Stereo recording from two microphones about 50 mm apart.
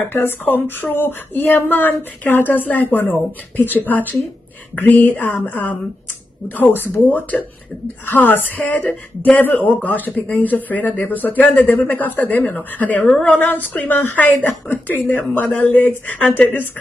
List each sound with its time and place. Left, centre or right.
0.1 s a woman's voice: left